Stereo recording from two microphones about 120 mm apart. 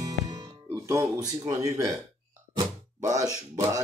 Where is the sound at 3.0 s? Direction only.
25° right (ahead or behind).